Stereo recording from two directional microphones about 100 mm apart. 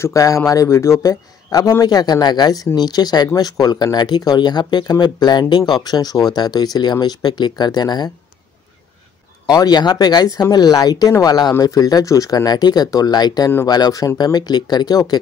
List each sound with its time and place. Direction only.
0.0 s a man's voice: 35° left (ahead or behind)
9.5 s a man's voice: 40° left (ahead or behind)